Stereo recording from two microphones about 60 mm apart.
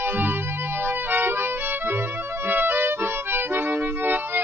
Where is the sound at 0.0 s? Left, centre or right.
Right.